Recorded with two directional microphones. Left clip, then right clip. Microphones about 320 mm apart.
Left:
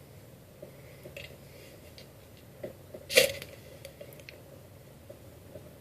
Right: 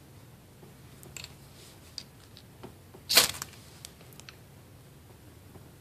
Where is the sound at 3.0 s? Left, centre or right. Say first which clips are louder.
Even; right.